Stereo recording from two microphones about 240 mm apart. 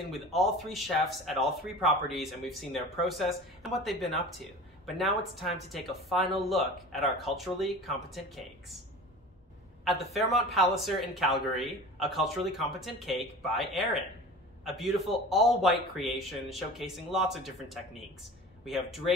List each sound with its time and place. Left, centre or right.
0.1 s speech: centre
9.8 s speech: centre